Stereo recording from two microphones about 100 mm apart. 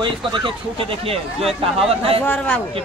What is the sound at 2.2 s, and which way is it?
Speech, 15° left (ahead or behind).